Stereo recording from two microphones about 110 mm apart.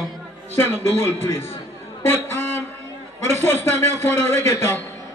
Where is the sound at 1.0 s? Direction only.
20° left (ahead or behind).